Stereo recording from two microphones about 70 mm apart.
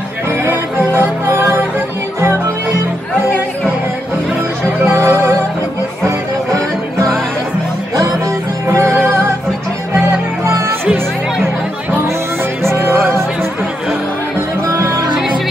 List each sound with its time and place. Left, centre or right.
0.5 s music: right
4.8 s music: right
6.0 s music: right
8.6 s music: right
12.6 s music: right